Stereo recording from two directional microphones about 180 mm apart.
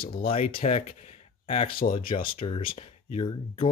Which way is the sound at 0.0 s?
55° left (ahead or behind).